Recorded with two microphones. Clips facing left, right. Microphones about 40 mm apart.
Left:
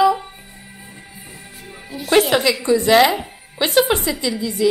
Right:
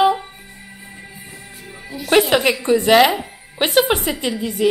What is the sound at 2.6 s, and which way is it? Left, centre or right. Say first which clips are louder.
A woman's voice: even; right.